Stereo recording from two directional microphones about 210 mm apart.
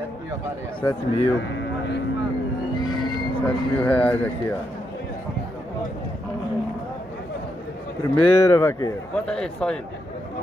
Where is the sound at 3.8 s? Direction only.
5° left (ahead or behind).